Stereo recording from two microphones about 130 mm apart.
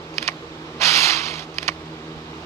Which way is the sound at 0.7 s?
20° left (ahead or behind).